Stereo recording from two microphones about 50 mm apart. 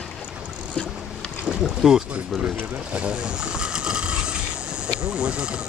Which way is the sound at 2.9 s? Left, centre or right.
Right.